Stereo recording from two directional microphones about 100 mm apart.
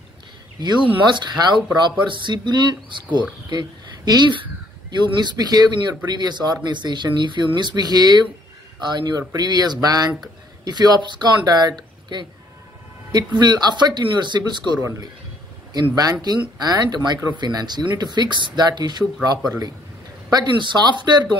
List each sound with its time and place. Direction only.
1.0 s speech: 45° right (ahead or behind)
5.2 s speech: 45° right (ahead or behind)
14.8 s speech: 30° right (ahead or behind)
15.7 s speech: 40° right (ahead or behind)
20.2 s speech: 45° right (ahead or behind)